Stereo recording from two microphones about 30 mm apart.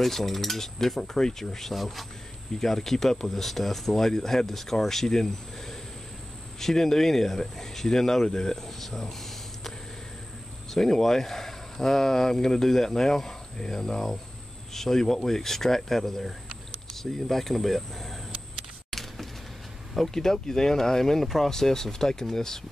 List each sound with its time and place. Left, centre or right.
0.0 s speech: centre
10.7 s speech: centre
18.9 s a sound: centre
20.2 s speech: centre